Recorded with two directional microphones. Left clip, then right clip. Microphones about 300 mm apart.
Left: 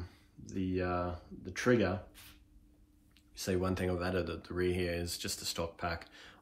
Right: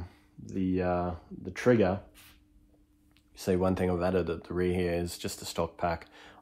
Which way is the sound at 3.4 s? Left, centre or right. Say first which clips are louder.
Right 6 dB; right.